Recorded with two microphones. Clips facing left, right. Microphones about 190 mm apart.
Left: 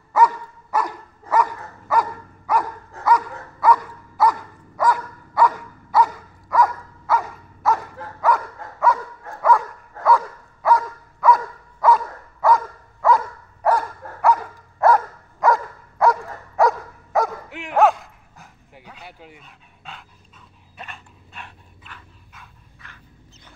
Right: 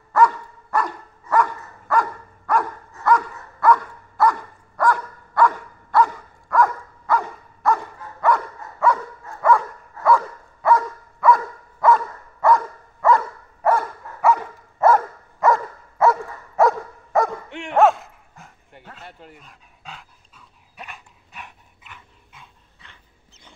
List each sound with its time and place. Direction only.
0.1 s dog: 5° left (ahead or behind)
1.9 s dog: 5° left (ahead or behind)
3.6 s dog: 5° left (ahead or behind); by 22.9 s 25° right (ahead or behind)